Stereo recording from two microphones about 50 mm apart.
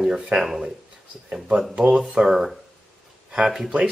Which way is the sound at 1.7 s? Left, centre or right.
Right.